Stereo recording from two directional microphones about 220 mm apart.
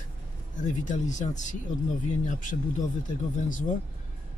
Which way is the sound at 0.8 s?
35° left (ahead or behind).